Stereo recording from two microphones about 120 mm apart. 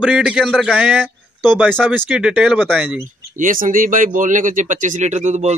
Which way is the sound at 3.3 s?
90° right.